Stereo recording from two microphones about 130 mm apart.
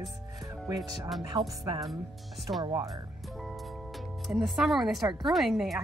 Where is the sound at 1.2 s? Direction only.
30° right (ahead or behind).